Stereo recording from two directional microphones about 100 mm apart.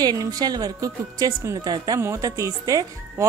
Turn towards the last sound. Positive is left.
turn(degrees=-35)  # may be behind; listen again after turning